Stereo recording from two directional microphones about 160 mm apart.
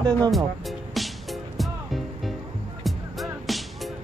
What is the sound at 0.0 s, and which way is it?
Speech, 25° right (ahead or behind).